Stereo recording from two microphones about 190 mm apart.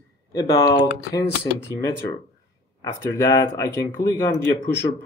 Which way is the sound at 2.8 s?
15° left (ahead or behind).